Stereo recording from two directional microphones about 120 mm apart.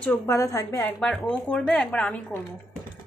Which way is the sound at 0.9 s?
5° left (ahead or behind).